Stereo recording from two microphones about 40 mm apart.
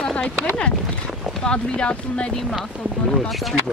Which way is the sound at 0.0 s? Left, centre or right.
Left.